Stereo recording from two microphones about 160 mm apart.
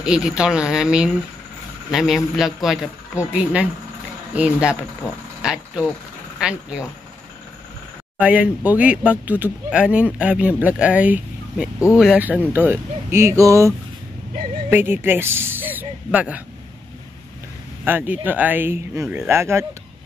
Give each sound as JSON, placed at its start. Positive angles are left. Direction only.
{"t": 0.0, "sound": "speech", "side_deg": -5}
{"t": 4.4, "sound": "speech", "side_deg": -5}
{"t": 8.2, "sound": "speech", "side_deg": -10}
{"t": 17.8, "sound": "speech", "side_deg": -10}